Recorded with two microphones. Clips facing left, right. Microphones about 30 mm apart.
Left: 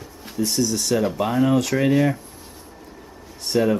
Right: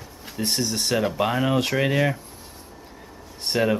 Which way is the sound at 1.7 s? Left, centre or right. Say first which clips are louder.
Left 3 dB; centre.